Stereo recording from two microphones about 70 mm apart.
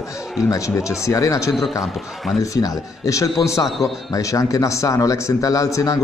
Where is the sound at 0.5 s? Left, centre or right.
Left.